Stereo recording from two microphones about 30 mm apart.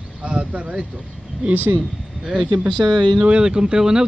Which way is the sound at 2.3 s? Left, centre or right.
Right.